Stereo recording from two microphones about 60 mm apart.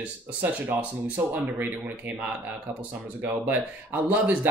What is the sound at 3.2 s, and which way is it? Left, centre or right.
Speech, right.